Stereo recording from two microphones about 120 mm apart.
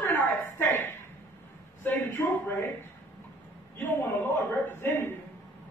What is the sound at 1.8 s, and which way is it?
Speech, 20° left (ahead or behind).